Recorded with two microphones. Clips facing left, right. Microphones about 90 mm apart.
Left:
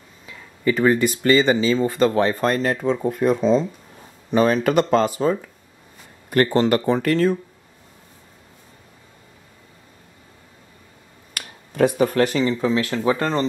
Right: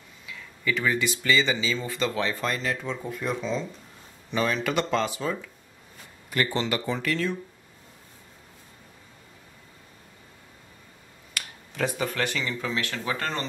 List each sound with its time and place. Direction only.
0.3 s speech: 40° left (ahead or behind)
11.3 s speech: 50° left (ahead or behind); by 13.5 s 30° left (ahead or behind)